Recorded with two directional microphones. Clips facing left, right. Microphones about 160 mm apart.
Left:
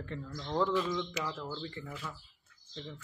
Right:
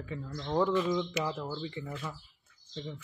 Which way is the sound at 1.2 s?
20° right (ahead or behind).